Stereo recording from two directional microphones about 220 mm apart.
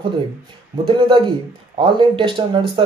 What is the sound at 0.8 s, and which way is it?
Speech, 20° right (ahead or behind).